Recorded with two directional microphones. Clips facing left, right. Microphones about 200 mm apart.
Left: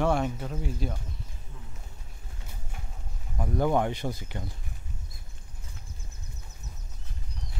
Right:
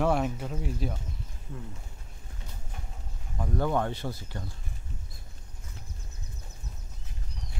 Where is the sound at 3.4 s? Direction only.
15° left (ahead or behind).